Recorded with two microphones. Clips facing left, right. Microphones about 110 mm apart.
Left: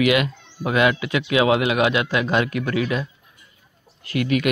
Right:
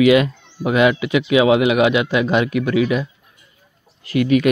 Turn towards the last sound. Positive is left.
turn(degrees=-30)  # may be behind; listen again after turning